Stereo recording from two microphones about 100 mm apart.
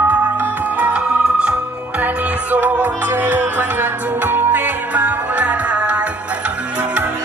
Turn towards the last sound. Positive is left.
turn(degrees=-10)  # may be behind; listen again after turning